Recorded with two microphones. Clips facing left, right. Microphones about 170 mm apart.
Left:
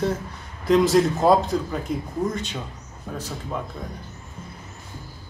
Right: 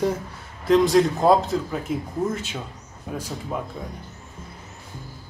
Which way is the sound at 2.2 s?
25° right (ahead or behind).